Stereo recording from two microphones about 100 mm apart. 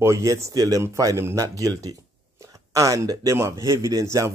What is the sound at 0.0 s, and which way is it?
Speech, 30° right (ahead or behind).